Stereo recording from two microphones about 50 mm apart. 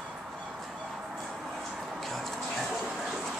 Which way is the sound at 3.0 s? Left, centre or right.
Centre.